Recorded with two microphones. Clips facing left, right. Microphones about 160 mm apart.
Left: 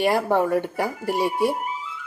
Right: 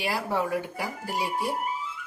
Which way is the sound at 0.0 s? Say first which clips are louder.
Left 8 dB; 55° left (ahead or behind).